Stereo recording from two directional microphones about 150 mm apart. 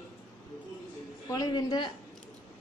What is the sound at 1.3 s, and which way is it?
Speech, 25° left (ahead or behind).